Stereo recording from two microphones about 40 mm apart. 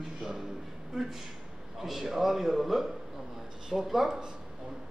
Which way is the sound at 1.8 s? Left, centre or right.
Centre.